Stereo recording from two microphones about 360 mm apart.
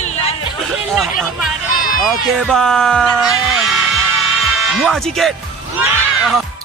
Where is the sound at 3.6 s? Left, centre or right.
Centre.